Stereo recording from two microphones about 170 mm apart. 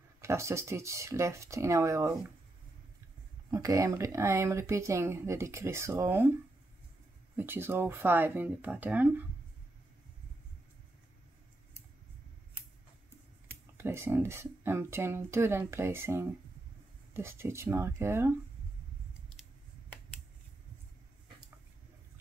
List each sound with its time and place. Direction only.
0.2 s speech: 15° right (ahead or behind)
3.5 s speech: 20° right (ahead or behind)
7.3 s speech: 15° right (ahead or behind)
13.5 s speech: 15° right (ahead or behind)